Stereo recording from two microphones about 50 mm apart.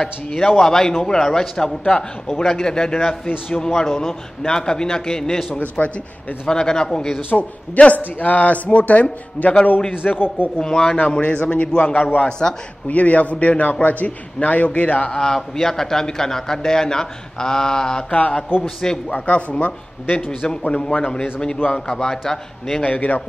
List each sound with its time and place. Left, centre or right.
0.0 s a man's voice: centre
5.5 s a man's voice: left
6.4 s a man's voice: centre
7.2 s a man's voice: left
10.6 s a man's voice: centre
11.0 s a man's voice: left
12.3 s a man's voice: centre
12.8 s a man's voice: left
15.1 s a man's voice: centre
19.1 s a man's voice: left; by 22.8 s centre
22.8 s a man's voice: left